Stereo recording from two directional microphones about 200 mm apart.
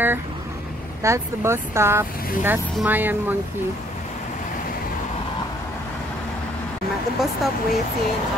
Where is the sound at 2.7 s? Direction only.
10° right (ahead or behind).